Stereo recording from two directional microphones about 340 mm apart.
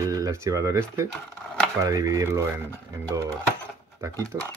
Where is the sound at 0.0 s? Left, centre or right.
Centre.